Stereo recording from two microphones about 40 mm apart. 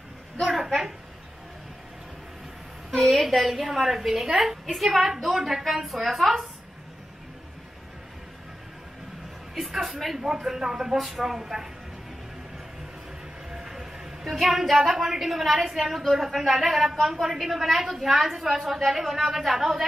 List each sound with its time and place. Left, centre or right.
2.9 s a woman's voice: centre
9.6 s a woman's voice: centre
10.2 s a woman's voice: centre
13.6 s a woman's voice: centre